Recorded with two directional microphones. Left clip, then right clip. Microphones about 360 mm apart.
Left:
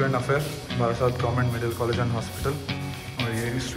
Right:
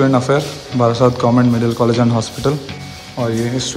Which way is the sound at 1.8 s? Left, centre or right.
Right.